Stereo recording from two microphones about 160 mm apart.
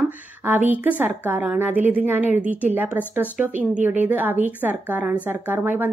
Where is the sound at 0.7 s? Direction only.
10° right (ahead or behind).